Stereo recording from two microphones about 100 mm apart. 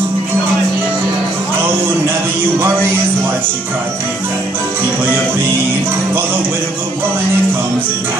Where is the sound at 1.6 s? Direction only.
20° right (ahead or behind).